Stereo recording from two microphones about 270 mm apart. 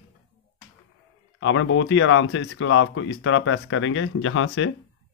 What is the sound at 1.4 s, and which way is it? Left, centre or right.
Speech, left.